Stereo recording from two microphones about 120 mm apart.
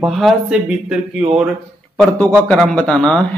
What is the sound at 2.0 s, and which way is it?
Speech, 5° left (ahead or behind).